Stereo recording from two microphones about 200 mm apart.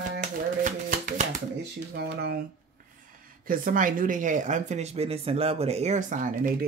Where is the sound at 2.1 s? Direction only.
50° right (ahead or behind).